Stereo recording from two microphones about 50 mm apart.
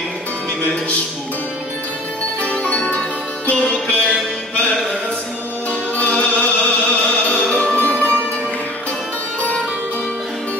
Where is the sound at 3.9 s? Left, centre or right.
Left.